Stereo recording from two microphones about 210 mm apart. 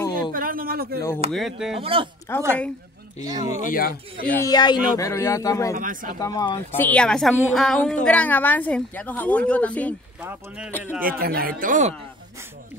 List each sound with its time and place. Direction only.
0.3 s a sound: 40° right (ahead or behind)
1.3 s speech: centre (ahead or behind)
1.8 s speech: 25° right (ahead or behind)
2.3 s a woman's voice: 10° left (ahead or behind)
3.3 s speech: 20° right (ahead or behind)
3.6 s speech: 45° left (ahead or behind)
4.4 s a woman's voice: 20° left (ahead or behind)
5.8 s speech: 40° right (ahead or behind)
6.1 s a woman's voice: 20° left (ahead or behind)
6.7 s a woman's voice: 10° left (ahead or behind)
11.0 s speech: 45° right (ahead or behind)